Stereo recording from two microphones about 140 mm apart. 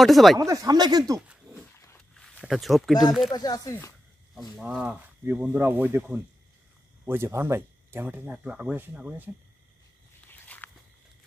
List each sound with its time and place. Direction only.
0.0 s speech: centre (ahead or behind)
0.4 s speech: 25° right (ahead or behind)
1.2 s dog: 10° right (ahead or behind)
2.1 s speech: centre (ahead or behind)
3.3 s speech: 25° left (ahead or behind)
4.4 s speech: 5° right (ahead or behind)
7.1 s speech: 15° right (ahead or behind)
10.4 s walk: 10° left (ahead or behind)